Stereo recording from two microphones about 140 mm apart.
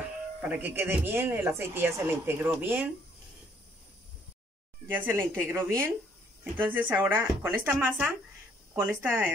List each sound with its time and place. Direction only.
0.4 s speech: 10° right (ahead or behind)
4.8 s speech: 15° right (ahead or behind)